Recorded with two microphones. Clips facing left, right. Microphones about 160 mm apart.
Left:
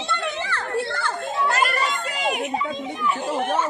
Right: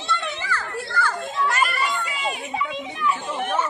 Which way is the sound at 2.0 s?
70° left (ahead or behind).